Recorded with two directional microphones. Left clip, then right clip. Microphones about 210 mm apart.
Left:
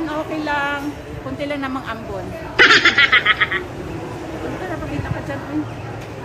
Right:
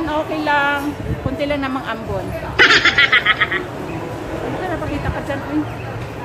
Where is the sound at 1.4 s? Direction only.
5° right (ahead or behind).